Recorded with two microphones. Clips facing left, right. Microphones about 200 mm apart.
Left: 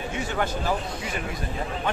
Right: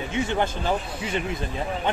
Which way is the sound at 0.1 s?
25° right (ahead or behind).